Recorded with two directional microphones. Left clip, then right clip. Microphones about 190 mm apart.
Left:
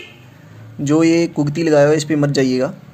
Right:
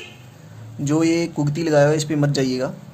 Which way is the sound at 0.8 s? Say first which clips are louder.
Left 5 dB; 15° left (ahead or behind).